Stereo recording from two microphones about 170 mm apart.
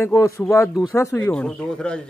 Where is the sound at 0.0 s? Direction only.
15° left (ahead or behind).